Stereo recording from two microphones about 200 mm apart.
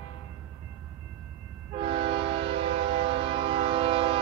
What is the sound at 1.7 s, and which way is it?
Train, 30° right (ahead or behind).